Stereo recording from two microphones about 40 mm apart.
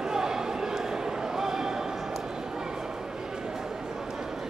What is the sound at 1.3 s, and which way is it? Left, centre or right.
Basketball bounce, centre.